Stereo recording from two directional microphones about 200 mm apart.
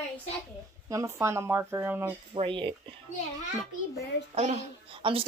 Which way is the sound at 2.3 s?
25° right (ahead or behind).